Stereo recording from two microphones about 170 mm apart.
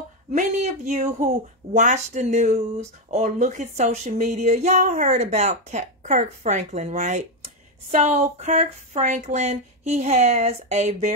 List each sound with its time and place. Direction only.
0.3 s speech: 45° right (ahead or behind)